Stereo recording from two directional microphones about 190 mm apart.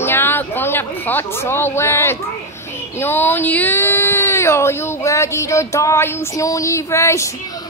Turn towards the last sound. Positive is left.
turn(degrees=15)  # may be behind; listen again after turning